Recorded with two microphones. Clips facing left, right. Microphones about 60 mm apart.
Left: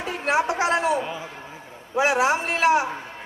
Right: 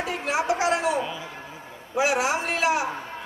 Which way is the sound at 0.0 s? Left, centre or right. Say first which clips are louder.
Left 3 dB; left.